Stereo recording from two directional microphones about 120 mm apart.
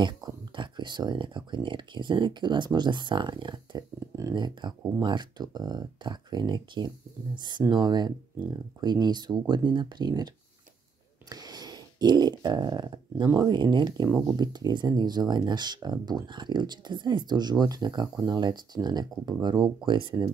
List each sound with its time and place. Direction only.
0.0 s speech: 40° right (ahead or behind)
11.2 s a sound: 35° right (ahead or behind)
13.3 s speech: 35° right (ahead or behind)